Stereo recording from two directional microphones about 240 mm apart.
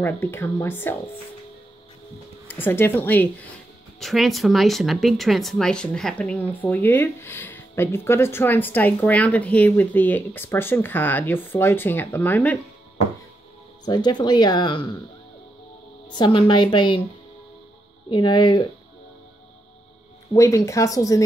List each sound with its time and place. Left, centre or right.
0.0 s speech: centre
2.4 s speech: centre
13.8 s speech: centre
16.1 s a woman's voice: centre
18.1 s a woman's voice: centre
20.3 s speech: centre